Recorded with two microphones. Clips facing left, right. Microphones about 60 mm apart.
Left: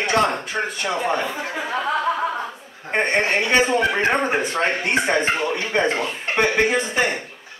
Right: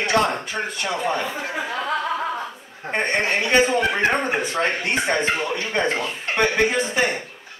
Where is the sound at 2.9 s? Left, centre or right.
Centre.